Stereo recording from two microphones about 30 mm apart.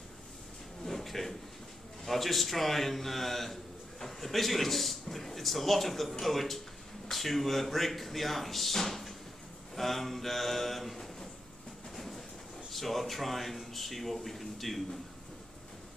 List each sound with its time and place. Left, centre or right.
0.8 s a sound: centre
2.0 s speech: centre
11.9 s train: centre
12.7 s speech: centre